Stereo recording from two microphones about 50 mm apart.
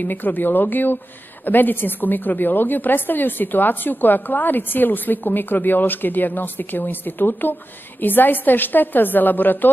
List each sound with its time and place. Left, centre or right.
0.0 s a woman's voice: left